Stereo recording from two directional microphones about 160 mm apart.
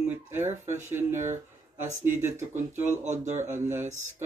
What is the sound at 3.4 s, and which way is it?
Speech, 15° right (ahead or behind).